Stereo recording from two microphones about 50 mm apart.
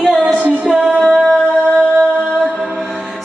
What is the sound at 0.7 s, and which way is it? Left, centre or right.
Music, centre.